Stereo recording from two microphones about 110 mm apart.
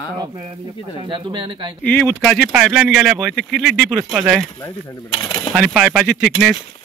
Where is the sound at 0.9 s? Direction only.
50° right (ahead or behind).